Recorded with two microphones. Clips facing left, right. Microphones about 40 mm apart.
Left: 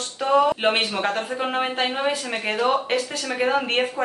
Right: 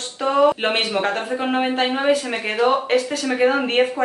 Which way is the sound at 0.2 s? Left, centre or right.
Centre.